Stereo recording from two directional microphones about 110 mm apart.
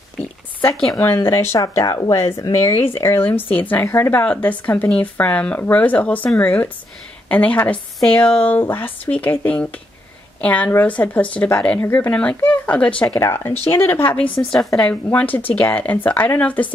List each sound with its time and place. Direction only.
0.7 s a woman's voice: 5° left (ahead or behind)
1.0 s speech: 25° left (ahead or behind)
13.1 s speech: 20° left (ahead or behind)
14.4 s a woman's voice: centre (ahead or behind)
15.0 s speech: 15° left (ahead or behind)